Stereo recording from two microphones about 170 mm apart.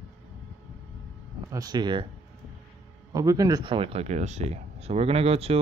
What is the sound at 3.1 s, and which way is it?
Speech, 20° right (ahead or behind).